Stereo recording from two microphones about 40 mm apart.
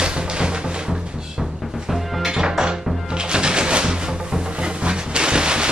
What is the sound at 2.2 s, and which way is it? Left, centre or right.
Music, centre.